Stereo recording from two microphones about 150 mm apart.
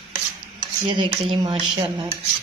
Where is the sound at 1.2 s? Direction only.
35° right (ahead or behind).